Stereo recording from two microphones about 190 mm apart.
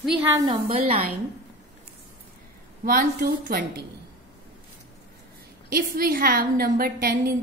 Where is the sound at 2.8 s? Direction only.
50° right (ahead or behind).